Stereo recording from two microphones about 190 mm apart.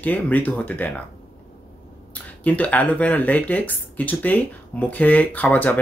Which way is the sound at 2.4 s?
10° left (ahead or behind).